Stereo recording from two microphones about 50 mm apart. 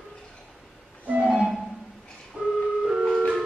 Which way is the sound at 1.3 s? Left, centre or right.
Centre.